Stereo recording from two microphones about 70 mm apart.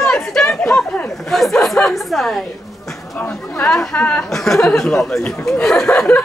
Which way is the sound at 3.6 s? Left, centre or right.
Centre.